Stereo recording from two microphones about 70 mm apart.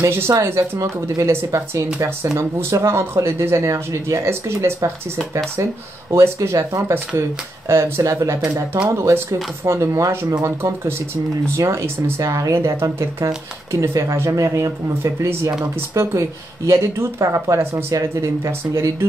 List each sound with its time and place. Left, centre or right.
0.0 s speech: right
9.1 s speech: right